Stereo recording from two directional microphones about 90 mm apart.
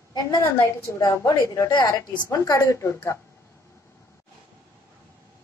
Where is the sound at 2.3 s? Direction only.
40° left (ahead or behind).